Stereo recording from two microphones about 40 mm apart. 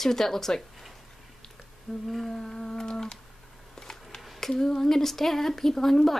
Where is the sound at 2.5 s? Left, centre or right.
Left.